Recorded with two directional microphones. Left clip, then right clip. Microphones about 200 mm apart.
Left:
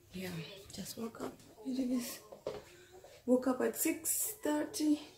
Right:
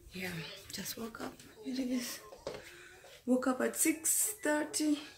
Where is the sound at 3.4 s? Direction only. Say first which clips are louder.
Right 4 dB; 30° right (ahead or behind).